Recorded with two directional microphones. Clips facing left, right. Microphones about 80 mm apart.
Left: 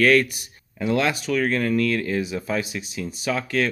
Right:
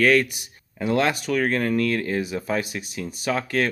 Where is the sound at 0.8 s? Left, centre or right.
Right.